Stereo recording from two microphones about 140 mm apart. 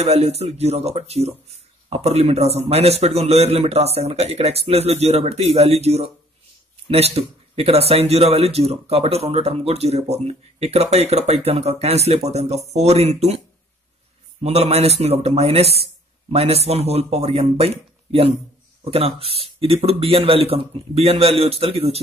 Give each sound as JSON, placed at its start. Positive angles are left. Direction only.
{"t": 0.0, "sound": "a man's voice", "side_deg": -50}
{"t": 14.4, "sound": "a man's voice", "side_deg": -50}